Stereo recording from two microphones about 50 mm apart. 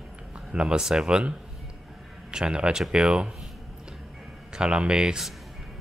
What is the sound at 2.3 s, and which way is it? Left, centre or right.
Speech, centre.